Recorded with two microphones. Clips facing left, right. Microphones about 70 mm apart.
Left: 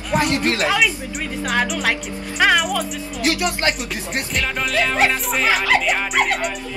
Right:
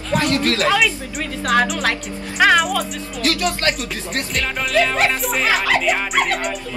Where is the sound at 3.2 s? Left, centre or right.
Left.